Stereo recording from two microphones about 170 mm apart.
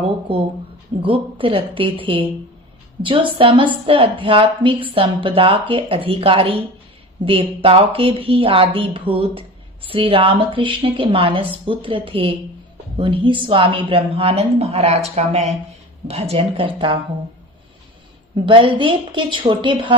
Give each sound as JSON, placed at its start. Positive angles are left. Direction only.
{"t": 1.0, "sound": "a woman's voice", "side_deg": -30}
{"t": 18.3, "sound": "a woman's voice", "side_deg": -30}